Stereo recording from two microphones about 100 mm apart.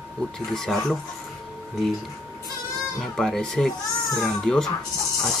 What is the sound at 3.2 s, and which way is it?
Speech, 5° left (ahead or behind).